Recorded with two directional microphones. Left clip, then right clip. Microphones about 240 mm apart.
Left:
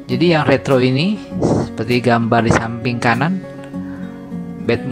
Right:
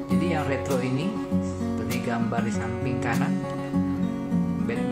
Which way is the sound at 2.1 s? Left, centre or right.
Left.